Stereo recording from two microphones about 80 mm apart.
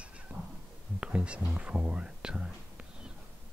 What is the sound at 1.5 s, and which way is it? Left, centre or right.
Speech, centre.